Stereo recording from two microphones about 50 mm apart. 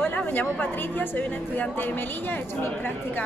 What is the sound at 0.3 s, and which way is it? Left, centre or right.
A woman's voice, left.